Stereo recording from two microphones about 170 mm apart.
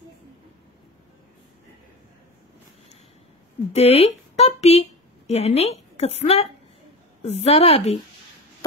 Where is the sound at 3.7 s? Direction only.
35° left (ahead or behind).